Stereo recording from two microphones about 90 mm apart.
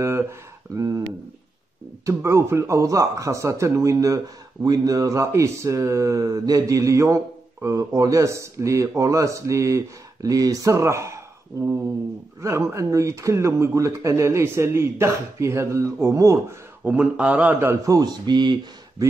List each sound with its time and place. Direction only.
0.0 s speech: 30° right (ahead or behind)
2.0 s speech: 30° right (ahead or behind)
16.8 s speech: 15° right (ahead or behind)
17.8 s speech: 45° right (ahead or behind)